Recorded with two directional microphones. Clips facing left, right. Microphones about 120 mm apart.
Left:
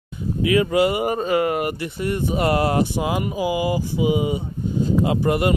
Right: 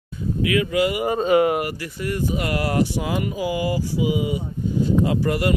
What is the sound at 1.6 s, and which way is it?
Speech, 25° left (ahead or behind).